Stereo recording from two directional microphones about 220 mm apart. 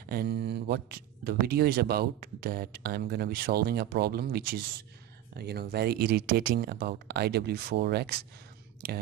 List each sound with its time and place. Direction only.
0.1 s speech: 45° right (ahead or behind)